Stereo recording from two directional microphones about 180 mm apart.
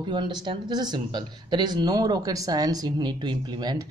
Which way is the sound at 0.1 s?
25° right (ahead or behind).